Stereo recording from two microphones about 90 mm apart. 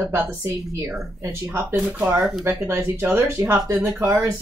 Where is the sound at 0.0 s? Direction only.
25° right (ahead or behind).